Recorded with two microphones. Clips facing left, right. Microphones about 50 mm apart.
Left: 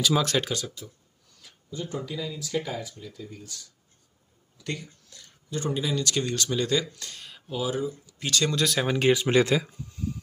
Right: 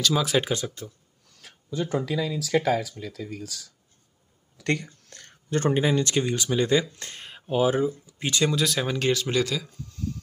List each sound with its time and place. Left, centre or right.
0.4 s speech: right
1.4 s speech: right
4.6 s speech: right
6.1 s speech: centre; by 7.9 s right
8.1 s speech: right
8.5 s speech: centre
8.8 s speech: centre; by 9.7 s left
9.7 s a sound: centre